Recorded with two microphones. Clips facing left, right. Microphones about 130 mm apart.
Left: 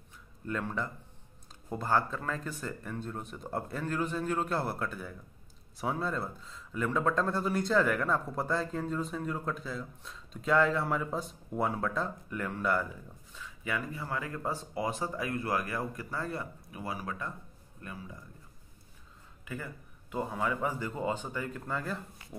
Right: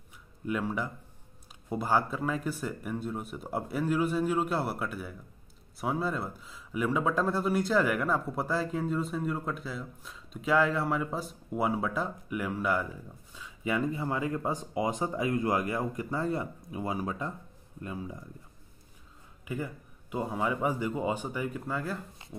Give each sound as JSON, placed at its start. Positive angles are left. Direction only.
{"t": 0.5, "sound": "speech", "side_deg": -10}
{"t": 13.3, "sound": "speech", "side_deg": -20}
{"t": 19.4, "sound": "speech", "side_deg": -15}